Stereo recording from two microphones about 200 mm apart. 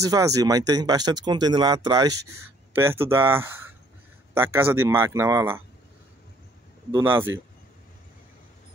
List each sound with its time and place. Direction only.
0.0 s speech: 15° right (ahead or behind)
6.9 s speech: 10° right (ahead or behind)